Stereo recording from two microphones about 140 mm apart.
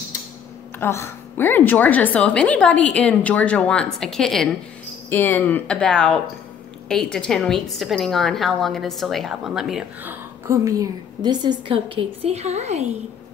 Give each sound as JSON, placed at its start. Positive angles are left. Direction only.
{"t": 0.7, "sound": "a woman's voice", "side_deg": 20}
{"t": 5.1, "sound": "a woman's voice", "side_deg": 15}
{"t": 10.0, "sound": "a woman's voice", "side_deg": -20}